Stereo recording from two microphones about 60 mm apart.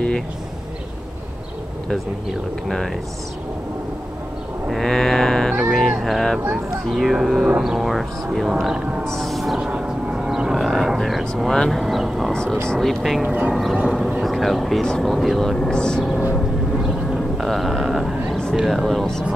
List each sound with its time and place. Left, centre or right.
4.6 s music: centre
6.5 s speech: centre
9.0 s a sound: centre
9.6 s vehicle: centre
12.6 s speech: centre
13.2 s speech: centre
14.2 s speech: centre
17.1 s a sound: centre
18.5 s speech: centre